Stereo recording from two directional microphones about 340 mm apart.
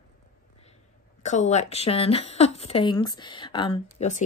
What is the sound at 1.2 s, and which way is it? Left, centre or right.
Speech, left.